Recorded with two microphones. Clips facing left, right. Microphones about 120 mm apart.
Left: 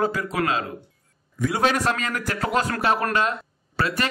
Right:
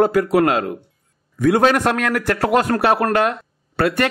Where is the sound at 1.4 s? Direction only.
55° right (ahead or behind).